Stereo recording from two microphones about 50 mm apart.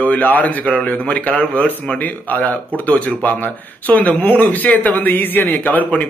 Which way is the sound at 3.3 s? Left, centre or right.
Left.